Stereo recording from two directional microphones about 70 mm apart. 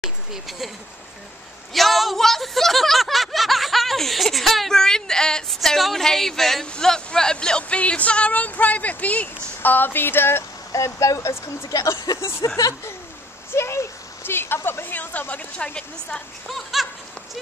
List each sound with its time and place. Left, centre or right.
0.0 s a sound: centre
1.7 s speech: centre; by 10.4 s left
10.7 s speech: left
13.5 s speech: left; by 16.2 s centre
16.4 s speech: centre